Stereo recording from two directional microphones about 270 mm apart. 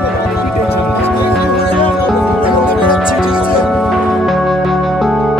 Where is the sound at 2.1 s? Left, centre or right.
Centre.